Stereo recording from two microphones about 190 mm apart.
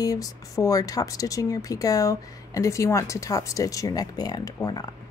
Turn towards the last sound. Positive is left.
turn(degrees=20)  # may be behind; listen again after turning